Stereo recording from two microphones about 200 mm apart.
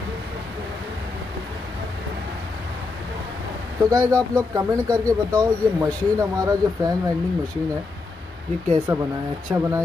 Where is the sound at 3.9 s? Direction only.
15° right (ahead or behind).